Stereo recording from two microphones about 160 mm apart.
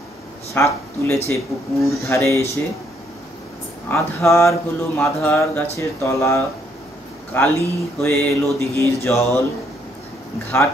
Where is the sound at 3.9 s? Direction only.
15° left (ahead or behind).